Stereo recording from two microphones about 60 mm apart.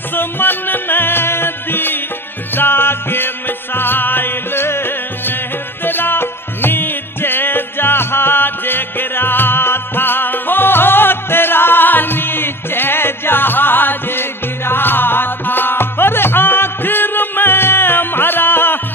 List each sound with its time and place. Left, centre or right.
0.1 s music: left